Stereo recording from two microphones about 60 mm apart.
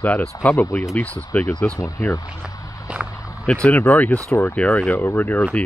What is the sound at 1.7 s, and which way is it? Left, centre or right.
Speech, left.